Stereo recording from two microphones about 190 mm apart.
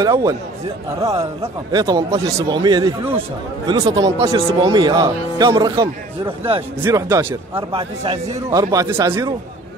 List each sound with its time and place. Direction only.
0.0 s speech: 20° right (ahead or behind)
1.4 s speech: 20° right (ahead or behind)
7.7 s speech: 30° right (ahead or behind)
8.5 s speech: 20° right (ahead or behind)